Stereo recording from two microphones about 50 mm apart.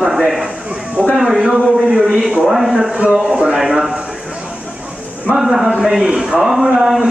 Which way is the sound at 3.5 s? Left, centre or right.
Centre.